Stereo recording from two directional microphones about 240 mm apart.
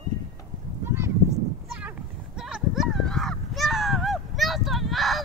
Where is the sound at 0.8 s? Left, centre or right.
Centre.